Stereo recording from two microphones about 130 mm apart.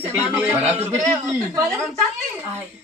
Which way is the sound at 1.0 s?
25° right (ahead or behind).